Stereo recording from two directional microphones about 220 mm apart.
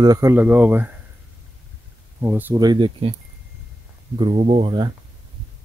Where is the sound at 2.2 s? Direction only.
10° right (ahead or behind).